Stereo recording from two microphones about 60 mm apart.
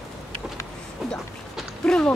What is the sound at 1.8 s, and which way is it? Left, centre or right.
Speech, centre.